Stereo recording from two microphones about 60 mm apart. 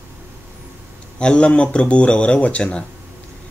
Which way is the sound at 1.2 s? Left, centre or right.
Centre.